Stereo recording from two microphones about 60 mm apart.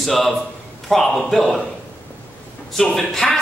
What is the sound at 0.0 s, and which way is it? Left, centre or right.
A man's voice, centre.